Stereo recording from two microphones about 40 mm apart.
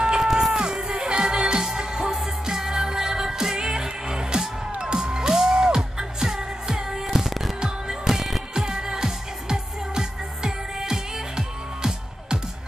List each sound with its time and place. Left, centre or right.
0.0 s music: centre
8.5 s music: centre